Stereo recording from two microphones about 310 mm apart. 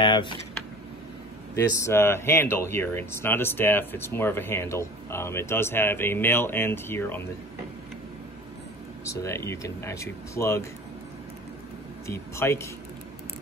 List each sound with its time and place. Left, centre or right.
0.0 s speech: centre
1.5 s speech: centre
9.0 s speech: centre
12.1 s speech: centre